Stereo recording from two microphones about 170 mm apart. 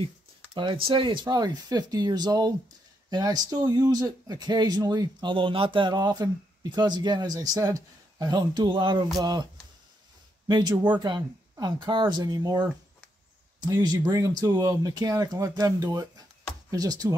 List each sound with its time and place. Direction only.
0.6 s speech: 30° right (ahead or behind)
11.0 s speech: 25° right (ahead or behind)